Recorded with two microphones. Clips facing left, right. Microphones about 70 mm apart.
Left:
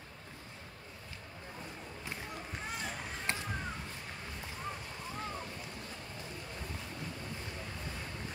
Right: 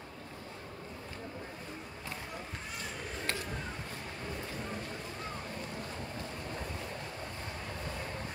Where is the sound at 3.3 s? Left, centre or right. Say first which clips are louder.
Even; left.